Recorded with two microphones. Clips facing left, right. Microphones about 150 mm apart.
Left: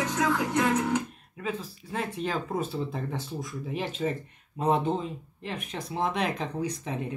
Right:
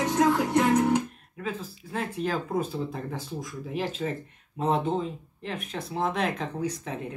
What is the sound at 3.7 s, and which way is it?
Speech, centre (ahead or behind).